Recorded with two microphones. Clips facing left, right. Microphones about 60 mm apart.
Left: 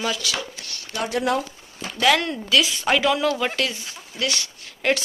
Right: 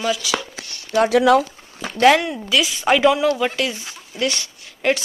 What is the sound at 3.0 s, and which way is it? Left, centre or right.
Speech, centre.